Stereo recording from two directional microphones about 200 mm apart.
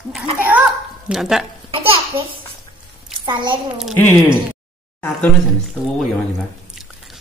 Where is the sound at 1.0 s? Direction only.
Centre (ahead or behind).